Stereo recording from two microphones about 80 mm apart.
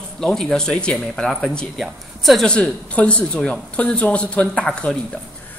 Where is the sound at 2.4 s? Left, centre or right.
Centre.